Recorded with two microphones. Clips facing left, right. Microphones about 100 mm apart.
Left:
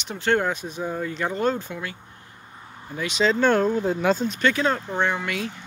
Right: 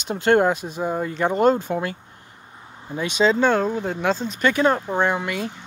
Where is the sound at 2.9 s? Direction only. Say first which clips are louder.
Right 3 dB; 25° right (ahead or behind).